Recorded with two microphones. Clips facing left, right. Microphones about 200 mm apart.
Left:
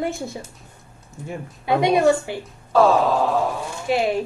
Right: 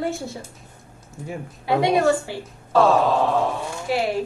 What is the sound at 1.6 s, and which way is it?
Speech, 15° left (ahead or behind).